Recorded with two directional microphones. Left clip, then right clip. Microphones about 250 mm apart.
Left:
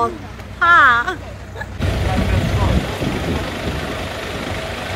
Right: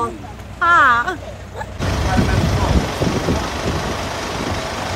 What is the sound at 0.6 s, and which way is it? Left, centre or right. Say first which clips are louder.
Speech: left 1 dB; centre.